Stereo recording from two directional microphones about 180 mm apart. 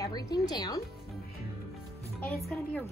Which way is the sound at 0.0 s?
20° left (ahead or behind).